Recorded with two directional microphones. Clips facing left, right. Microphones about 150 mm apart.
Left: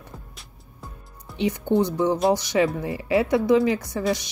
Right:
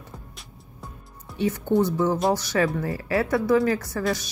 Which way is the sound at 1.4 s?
15° left (ahead or behind).